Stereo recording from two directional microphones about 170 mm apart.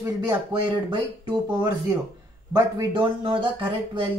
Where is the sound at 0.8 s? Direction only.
25° right (ahead or behind).